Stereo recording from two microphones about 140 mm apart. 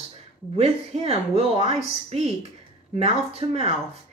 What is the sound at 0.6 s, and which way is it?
A woman's voice, 45° right (ahead or behind).